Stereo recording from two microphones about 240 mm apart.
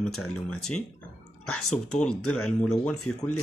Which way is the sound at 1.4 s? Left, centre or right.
Left.